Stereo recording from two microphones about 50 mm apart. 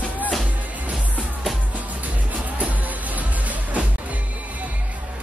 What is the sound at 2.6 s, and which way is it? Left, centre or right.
Music, right.